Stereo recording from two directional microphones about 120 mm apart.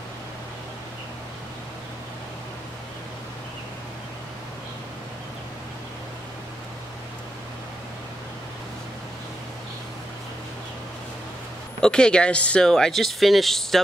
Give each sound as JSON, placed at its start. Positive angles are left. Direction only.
{"t": 11.8, "sound": "speech", "side_deg": 5}